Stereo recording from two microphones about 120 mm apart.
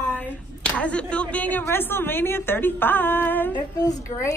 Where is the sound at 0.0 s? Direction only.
15° left (ahead or behind).